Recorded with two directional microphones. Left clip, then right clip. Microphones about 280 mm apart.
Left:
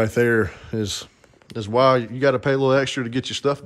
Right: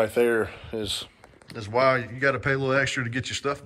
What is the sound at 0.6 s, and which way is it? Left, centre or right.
Speech, left.